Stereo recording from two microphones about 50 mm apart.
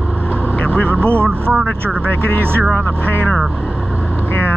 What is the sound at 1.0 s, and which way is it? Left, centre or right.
Speech, left.